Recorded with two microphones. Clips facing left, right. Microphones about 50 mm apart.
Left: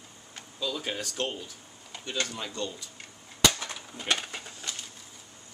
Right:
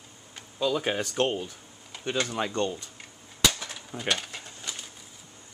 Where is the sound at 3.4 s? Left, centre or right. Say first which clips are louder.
Left 1 dB; centre.